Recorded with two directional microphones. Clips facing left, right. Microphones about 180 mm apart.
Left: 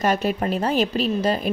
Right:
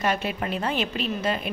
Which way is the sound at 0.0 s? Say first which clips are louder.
Left 5 dB; 40° left (ahead or behind).